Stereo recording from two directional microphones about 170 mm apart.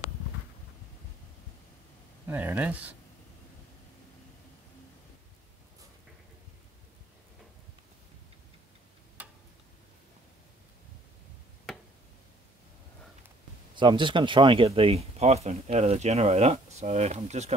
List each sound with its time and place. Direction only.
2.2 s speech: 10° right (ahead or behind)
9.2 s tick-tock: 10° right (ahead or behind)
13.7 s speech: 30° right (ahead or behind)